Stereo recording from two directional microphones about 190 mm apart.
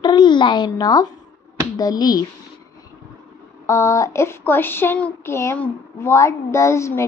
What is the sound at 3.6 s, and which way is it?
Child singing, 15° left (ahead or behind).